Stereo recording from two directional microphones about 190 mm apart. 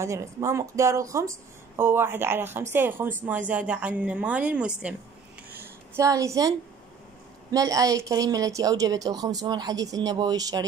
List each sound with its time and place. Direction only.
0.0 s a woman's voice: 15° right (ahead or behind)
5.6 s a sound: 15° right (ahead or behind)
7.5 s a woman's voice: 20° right (ahead or behind)